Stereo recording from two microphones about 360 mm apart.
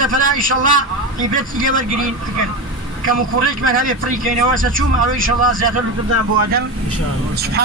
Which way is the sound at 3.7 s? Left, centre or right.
Right.